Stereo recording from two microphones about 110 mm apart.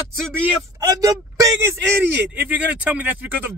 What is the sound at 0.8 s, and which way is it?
Speech, 30° right (ahead or behind).